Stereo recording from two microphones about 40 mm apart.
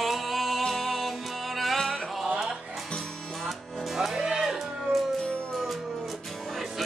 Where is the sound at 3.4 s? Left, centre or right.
Centre.